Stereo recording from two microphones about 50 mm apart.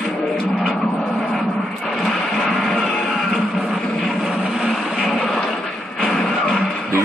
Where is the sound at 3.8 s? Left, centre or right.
Centre.